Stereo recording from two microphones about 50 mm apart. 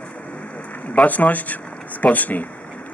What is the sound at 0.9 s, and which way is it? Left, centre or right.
Speech, left.